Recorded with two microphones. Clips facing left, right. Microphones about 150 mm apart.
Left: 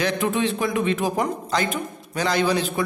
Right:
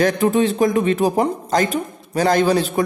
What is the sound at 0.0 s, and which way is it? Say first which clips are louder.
A man's voice: right 6 dB; 40° right (ahead or behind).